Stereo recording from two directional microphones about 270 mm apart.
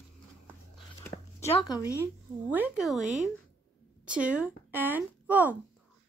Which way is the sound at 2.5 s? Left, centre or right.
Centre.